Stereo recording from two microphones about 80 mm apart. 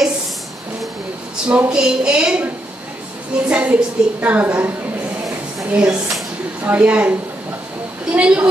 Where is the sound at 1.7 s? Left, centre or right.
Centre.